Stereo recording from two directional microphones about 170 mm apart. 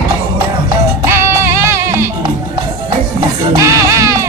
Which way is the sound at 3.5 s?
20° right (ahead or behind).